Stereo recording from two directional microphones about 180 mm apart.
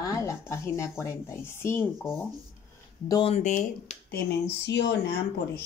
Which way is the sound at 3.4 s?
45° left (ahead or behind).